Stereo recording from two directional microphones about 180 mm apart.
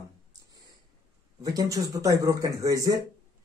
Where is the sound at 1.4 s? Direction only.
20° right (ahead or behind).